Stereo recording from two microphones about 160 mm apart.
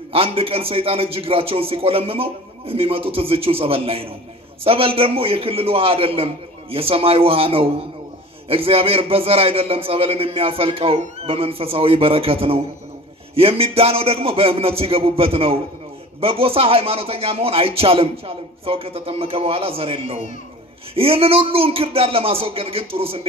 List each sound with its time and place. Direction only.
0.1 s a man's voice: 35° right (ahead or behind)